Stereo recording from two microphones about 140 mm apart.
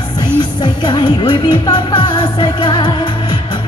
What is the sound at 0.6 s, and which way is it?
Music, 35° left (ahead or behind).